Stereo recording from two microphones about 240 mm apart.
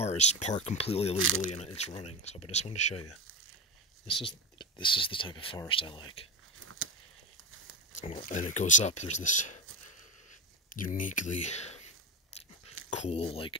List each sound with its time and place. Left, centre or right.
0.0 s speech: left
1.1 s speech: right
1.5 s speech: left
4.1 s speech: left
6.6 s a sound: right
8.0 s speech: left
10.7 s speech: left
13.0 s speech: left